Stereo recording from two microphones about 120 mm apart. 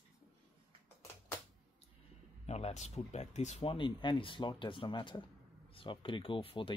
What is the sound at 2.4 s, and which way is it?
Speech, 65° left (ahead or behind).